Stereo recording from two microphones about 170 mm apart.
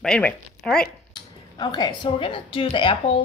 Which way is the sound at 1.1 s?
25° left (ahead or behind).